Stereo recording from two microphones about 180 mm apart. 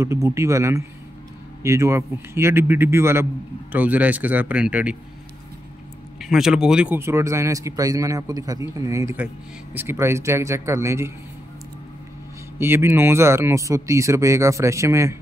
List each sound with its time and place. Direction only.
0.0 s speech: 15° right (ahead or behind)
6.1 s speech: centre (ahead or behind)
12.5 s speech: 10° right (ahead or behind)